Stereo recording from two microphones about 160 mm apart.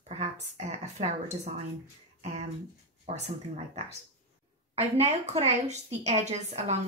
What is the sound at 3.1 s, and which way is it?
A woman's voice, 40° right (ahead or behind).